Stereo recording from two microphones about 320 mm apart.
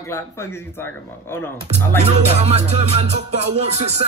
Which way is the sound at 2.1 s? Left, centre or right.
Centre.